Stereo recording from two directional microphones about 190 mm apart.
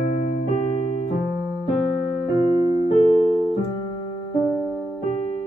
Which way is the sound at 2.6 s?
20° right (ahead or behind).